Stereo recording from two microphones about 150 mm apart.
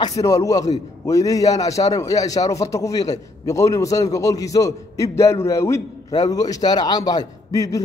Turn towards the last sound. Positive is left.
turn(degrees=20)  # may be behind; listen again after turning